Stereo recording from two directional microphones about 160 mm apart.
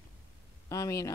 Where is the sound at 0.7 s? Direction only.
20° left (ahead or behind).